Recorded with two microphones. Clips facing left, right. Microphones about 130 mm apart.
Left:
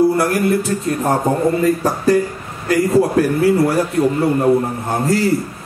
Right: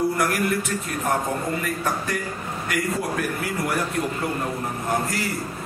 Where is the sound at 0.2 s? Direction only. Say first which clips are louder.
Left 7 dB; 30° left (ahead or behind).